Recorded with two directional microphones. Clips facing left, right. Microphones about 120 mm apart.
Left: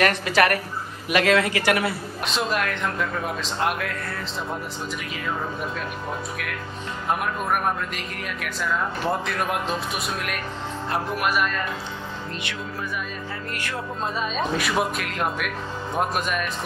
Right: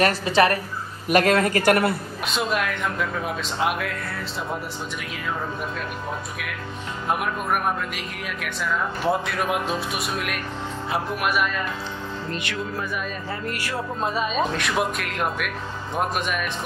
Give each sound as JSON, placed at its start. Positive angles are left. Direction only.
{"t": 0.0, "sound": "a woman's voice", "side_deg": -30}
{"t": 1.0, "sound": "speech", "side_deg": -45}
{"t": 2.2, "sound": "speech", "side_deg": 0}
{"t": 7.1, "sound": "speech", "side_deg": -5}
{"t": 13.6, "sound": "speech", "side_deg": -5}